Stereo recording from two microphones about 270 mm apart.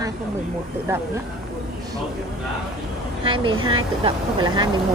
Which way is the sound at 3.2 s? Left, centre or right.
Centre.